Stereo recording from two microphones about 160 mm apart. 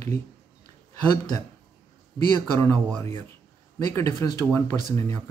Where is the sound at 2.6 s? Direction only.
25° right (ahead or behind).